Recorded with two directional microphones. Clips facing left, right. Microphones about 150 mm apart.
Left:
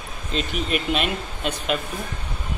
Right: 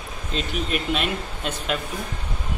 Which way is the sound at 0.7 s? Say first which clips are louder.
Left 2 dB; 5° left (ahead or behind).